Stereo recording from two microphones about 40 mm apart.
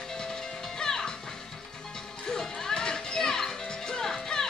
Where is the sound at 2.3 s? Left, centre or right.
Centre.